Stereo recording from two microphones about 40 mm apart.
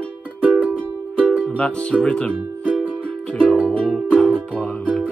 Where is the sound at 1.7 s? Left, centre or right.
Left.